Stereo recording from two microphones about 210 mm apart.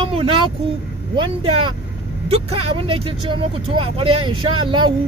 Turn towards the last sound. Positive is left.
turn(degrees=-25)  # may be behind; listen again after turning